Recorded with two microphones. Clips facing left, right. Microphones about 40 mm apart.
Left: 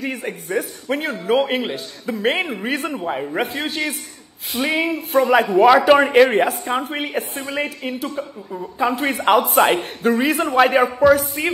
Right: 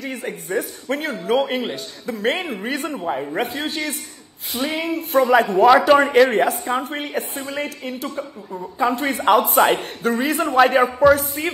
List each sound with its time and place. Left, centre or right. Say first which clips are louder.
0.0 s a woman's voice: left 2 dB; centre
4.9 s a woman's voice: right 2 dB; centre
8.2 s a woman's voice: left 1 dB; centre